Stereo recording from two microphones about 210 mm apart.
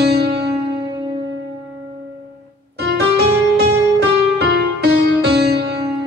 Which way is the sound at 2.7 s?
50° right (ahead or behind).